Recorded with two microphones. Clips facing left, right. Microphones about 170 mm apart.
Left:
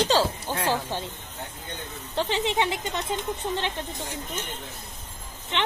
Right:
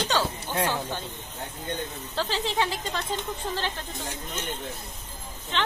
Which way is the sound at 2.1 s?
20° left (ahead or behind).